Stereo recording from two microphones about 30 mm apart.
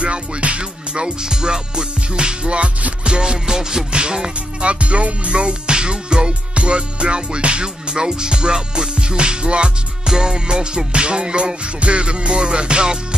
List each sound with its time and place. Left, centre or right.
0.0 s music: right
1.2 s music: right
4.6 s music: right